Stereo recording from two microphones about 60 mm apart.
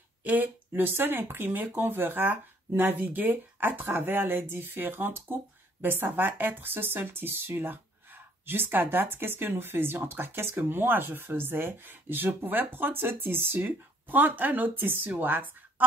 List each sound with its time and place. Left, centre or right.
0.2 s speech: right